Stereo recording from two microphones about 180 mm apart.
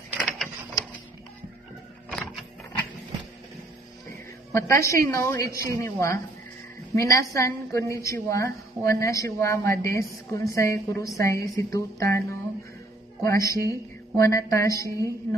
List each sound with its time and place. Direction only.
0.2 s mechanisms: centre (ahead or behind)
4.5 s a woman's voice: 15° left (ahead or behind)